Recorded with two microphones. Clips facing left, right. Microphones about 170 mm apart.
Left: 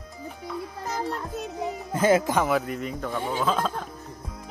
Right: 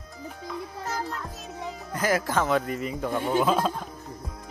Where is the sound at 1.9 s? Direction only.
25° left (ahead or behind).